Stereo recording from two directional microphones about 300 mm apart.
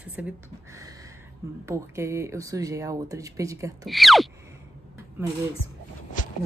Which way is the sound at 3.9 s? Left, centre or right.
Centre.